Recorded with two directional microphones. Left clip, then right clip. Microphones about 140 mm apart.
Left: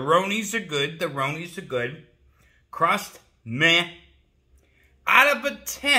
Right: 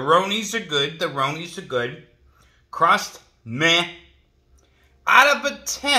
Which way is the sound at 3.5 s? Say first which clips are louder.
Right 1 dB; 40° left (ahead or behind).